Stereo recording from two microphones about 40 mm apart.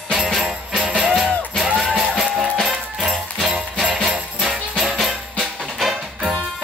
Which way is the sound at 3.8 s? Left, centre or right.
Centre.